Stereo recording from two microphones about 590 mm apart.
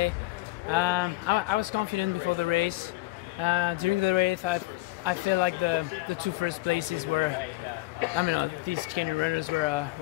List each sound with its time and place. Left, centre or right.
0.7 s speech: right